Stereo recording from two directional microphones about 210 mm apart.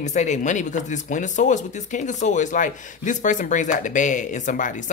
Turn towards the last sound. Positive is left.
turn(degrees=35)  # may be behind; listen again after turning